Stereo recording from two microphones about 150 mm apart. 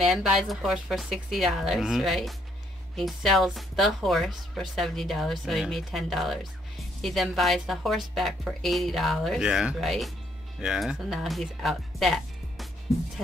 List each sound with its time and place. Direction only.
0.0 s speech: centre (ahead or behind)